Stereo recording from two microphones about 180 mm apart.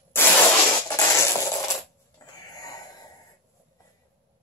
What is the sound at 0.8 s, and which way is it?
Music, 15° left (ahead or behind).